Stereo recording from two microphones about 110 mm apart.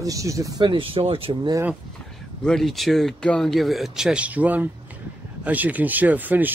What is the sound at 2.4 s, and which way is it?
Speech, centre (ahead or behind).